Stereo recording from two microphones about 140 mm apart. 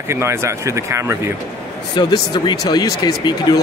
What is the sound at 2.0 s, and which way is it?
Speech, 35° left (ahead or behind).